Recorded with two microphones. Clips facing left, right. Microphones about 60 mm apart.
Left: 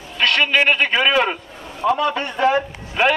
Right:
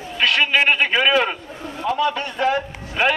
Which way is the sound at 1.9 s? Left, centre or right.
Left.